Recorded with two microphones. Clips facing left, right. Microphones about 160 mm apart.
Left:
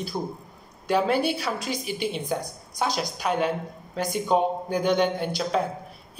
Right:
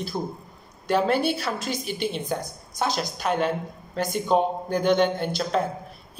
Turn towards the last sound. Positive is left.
turn(degrees=10)  # may be behind; listen again after turning